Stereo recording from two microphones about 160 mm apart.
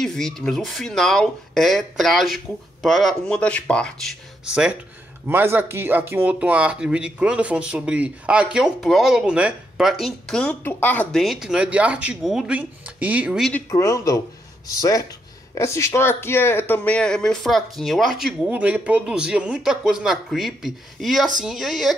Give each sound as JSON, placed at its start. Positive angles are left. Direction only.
{"t": 0.0, "sound": "speech", "side_deg": 5}
{"t": 13.5, "sound": "speech", "side_deg": 15}